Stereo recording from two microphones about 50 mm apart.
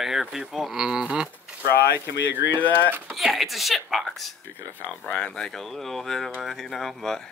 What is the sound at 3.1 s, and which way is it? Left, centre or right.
Speech, centre.